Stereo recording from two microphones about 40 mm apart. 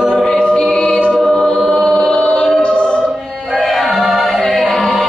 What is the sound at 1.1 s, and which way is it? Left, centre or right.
Choir, centre.